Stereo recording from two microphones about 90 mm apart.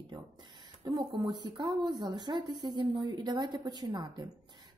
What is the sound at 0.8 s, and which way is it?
A woman's voice, 55° right (ahead or behind).